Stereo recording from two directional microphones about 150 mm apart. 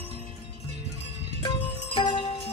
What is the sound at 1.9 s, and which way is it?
Music, 35° left (ahead or behind).